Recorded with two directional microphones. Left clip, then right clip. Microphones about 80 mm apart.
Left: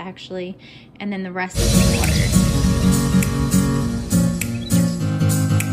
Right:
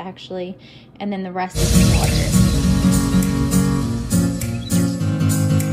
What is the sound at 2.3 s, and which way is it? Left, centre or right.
Music, centre.